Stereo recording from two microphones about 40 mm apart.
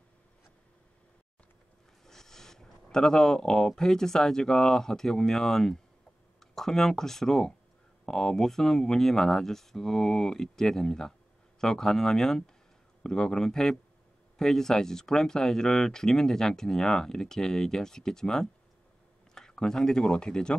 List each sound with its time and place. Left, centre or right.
2.0 s speech: centre